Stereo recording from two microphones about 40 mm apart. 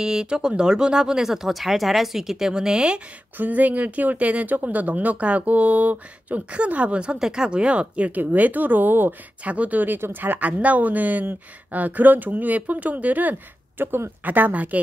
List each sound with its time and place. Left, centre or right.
0.0 s speech: centre
3.3 s speech: right
7.2 s speech: centre; by 8.2 s right
8.2 s speech: right
9.4 s speech: right
14.2 s speech: right